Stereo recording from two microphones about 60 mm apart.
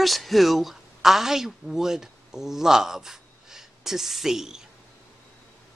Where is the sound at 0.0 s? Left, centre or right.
Centre.